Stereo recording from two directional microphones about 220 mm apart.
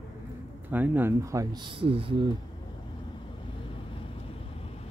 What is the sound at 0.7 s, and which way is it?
Speech, 10° right (ahead or behind).